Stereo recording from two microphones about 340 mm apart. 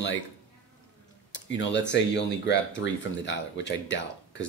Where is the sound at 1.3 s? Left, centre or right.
Left.